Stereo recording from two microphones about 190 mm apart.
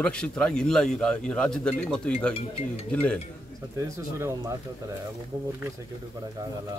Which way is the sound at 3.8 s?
15° right (ahead or behind).